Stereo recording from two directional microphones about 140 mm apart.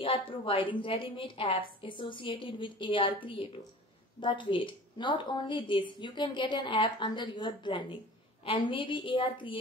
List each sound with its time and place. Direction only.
0.0 s a woman's voice: 40° left (ahead or behind)